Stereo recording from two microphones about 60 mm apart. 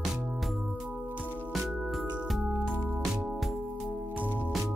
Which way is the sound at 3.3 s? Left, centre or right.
Centre.